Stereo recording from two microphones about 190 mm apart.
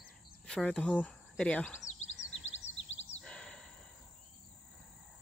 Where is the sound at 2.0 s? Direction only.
90° left.